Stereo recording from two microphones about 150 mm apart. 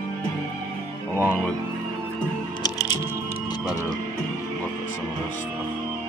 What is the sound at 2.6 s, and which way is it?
Music, 25° left (ahead or behind).